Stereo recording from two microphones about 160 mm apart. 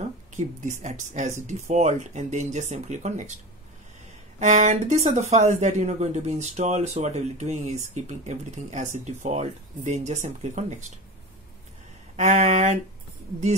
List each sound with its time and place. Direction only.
0.4 s speech: 50° right (ahead or behind)
4.4 s speech: 50° right (ahead or behind)
12.2 s speech: 45° right (ahead or behind)